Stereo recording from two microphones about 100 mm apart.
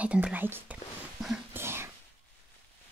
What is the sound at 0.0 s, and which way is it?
Speech, 10° right (ahead or behind).